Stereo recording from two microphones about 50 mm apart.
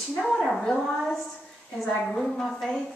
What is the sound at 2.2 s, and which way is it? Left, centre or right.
Speech, centre.